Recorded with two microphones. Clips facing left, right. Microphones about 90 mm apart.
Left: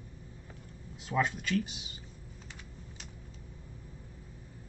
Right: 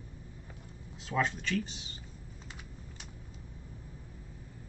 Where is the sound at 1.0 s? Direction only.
5° left (ahead or behind).